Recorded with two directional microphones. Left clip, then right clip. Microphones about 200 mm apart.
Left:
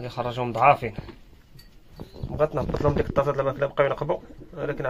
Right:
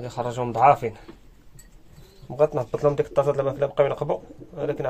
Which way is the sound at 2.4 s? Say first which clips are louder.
Right 3 dB; 20° right (ahead or behind).